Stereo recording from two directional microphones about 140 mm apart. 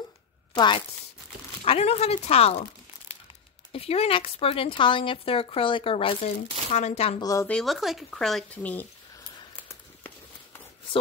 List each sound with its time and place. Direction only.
0.6 s speech: 35° left (ahead or behind)
1.6 s speech: 45° left (ahead or behind)
3.7 s speech: 45° left (ahead or behind)
6.7 s speech: 50° left (ahead or behind)
7.2 s speech: 25° left (ahead or behind)
7.4 s speech: 5° left (ahead or behind)